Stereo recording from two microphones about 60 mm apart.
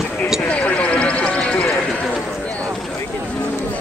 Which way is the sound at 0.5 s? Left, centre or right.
Left.